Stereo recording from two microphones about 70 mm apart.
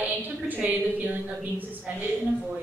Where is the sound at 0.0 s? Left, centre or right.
Right.